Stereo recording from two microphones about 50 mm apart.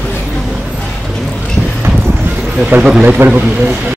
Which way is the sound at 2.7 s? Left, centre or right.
Right.